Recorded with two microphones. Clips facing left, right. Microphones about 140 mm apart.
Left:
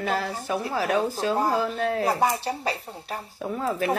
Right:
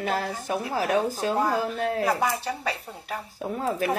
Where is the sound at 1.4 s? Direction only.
35° left (ahead or behind).